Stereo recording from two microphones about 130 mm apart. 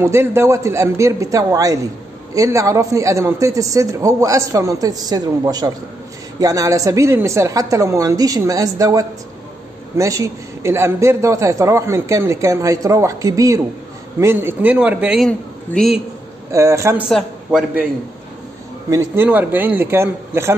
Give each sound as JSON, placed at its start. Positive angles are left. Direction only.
{"t": 0.0, "sound": "a man's voice", "side_deg": -20}
{"t": 15.2, "sound": "a man's voice", "side_deg": 0}
{"t": 16.5, "sound": "a man's voice", "side_deg": -20}
{"t": 17.1, "sound": "a man's voice", "side_deg": -5}
{"t": 18.9, "sound": "a man's voice", "side_deg": -20}